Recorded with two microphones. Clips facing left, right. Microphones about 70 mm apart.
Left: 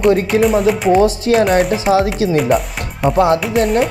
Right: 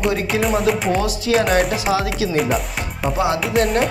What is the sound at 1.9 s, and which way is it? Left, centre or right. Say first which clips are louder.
Speech: left 6 dB; left.